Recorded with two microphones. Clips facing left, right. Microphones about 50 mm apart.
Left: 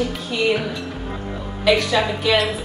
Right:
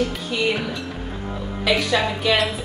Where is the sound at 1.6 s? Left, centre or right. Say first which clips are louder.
Left 3 dB; centre.